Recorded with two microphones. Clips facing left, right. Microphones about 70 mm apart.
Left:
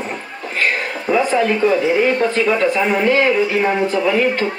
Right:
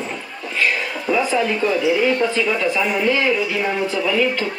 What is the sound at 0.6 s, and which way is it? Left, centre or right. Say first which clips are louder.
Speech: left 1 dB; left.